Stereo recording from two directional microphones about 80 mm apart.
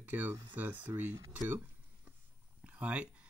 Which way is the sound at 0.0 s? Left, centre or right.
Right.